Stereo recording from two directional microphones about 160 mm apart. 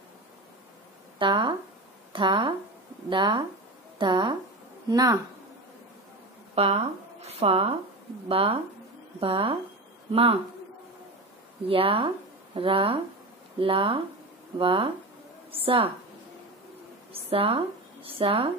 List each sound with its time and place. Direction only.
1.2 s speech: 30° right (ahead or behind)
6.5 s speech: 40° right (ahead or behind)
11.7 s speech: 35° right (ahead or behind)
17.1 s speech: 35° right (ahead or behind)